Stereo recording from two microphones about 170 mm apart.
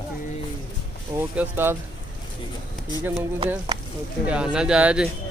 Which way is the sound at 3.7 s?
25° right (ahead or behind).